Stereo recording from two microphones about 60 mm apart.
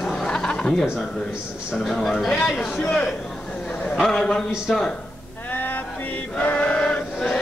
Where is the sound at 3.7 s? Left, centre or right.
Left.